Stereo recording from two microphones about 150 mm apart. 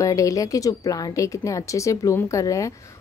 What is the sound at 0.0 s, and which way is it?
Speech, 20° left (ahead or behind).